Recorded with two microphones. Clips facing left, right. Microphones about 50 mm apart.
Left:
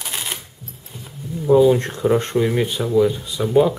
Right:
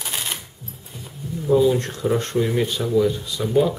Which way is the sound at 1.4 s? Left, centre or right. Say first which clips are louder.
Left 4 dB; centre.